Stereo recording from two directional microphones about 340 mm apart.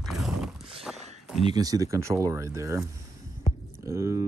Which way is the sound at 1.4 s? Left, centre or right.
Centre.